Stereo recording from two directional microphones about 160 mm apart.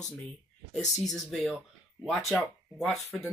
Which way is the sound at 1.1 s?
Centre (ahead or behind).